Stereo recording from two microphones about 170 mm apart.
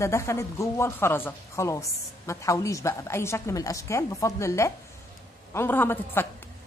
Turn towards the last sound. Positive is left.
turn(degrees=15)  # may be behind; listen again after turning